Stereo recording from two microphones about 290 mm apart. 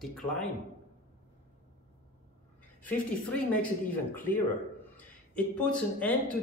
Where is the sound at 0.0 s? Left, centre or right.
Centre.